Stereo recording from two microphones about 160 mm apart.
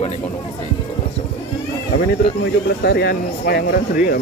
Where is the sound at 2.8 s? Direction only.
90° left; by 4.1 s 70° left (ahead or behind).